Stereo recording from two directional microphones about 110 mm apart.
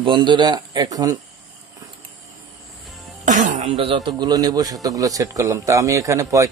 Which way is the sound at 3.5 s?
80° right.